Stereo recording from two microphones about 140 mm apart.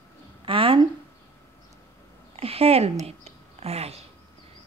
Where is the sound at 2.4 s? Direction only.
45° right (ahead or behind).